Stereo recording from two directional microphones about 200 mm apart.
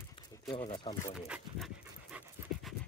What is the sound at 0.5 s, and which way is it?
Speech, 25° left (ahead or behind).